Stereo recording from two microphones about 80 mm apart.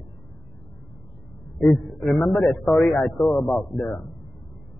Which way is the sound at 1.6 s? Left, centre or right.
Centre.